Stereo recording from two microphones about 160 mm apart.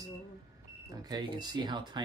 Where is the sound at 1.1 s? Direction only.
25° right (ahead or behind).